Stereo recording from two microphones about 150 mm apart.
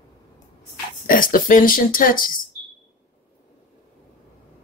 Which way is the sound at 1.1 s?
65° left (ahead or behind).